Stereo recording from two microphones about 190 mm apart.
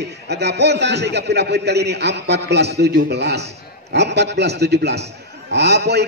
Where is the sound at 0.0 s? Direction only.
60° right (ahead or behind).